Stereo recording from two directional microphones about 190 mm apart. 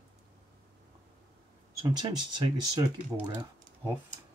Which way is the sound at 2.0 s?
25° right (ahead or behind).